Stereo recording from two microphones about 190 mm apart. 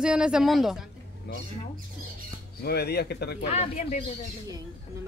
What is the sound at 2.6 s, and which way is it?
Speech, 55° left (ahead or behind).